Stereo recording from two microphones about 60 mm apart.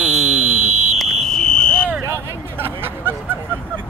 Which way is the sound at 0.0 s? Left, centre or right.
Centre.